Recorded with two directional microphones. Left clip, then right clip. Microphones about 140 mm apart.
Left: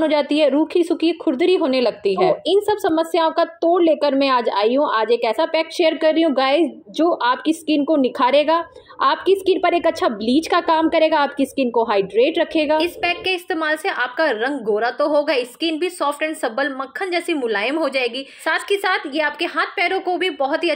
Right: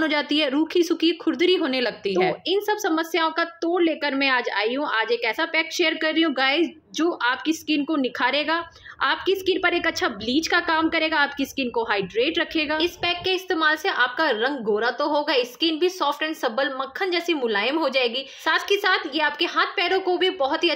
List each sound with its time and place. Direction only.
0.0 s a woman's voice: 5° left (ahead or behind)